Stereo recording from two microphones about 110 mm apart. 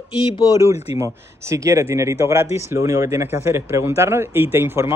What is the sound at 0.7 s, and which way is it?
Speech, 65° left (ahead or behind).